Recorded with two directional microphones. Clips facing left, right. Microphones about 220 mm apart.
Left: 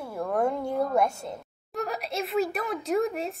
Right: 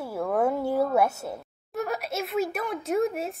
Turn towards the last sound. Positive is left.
turn(degrees=0)  # may be behind; listen again after turning